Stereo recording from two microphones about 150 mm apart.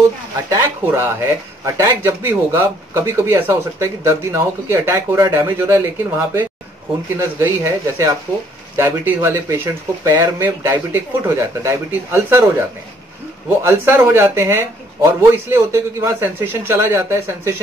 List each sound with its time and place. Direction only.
0.5 s speech: 15° right (ahead or behind)